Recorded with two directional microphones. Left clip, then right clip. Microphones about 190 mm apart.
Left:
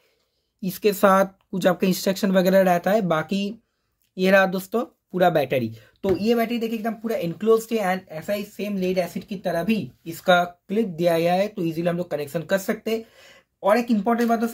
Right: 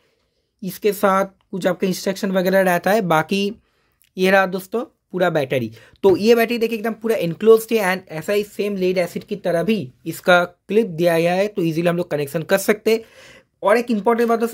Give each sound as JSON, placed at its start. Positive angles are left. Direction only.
{"t": 0.6, "sound": "speech", "side_deg": -10}
{"t": 4.4, "sound": "speech", "side_deg": -15}
{"t": 5.9, "sound": "speech", "side_deg": -45}